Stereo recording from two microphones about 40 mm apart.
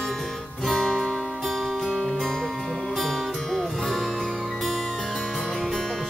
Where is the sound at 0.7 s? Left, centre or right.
Centre.